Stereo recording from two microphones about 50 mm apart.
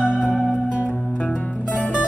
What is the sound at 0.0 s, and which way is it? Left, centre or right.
Music, centre.